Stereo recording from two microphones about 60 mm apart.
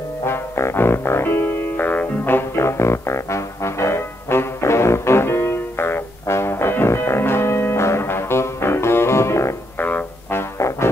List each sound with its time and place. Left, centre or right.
0.2 s music: left
9.8 s music: left